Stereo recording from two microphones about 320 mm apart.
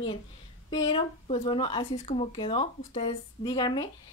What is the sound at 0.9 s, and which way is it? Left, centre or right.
A woman's voice, centre.